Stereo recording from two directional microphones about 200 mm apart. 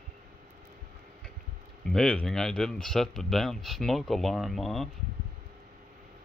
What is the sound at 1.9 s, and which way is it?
Speech, 5° left (ahead or behind).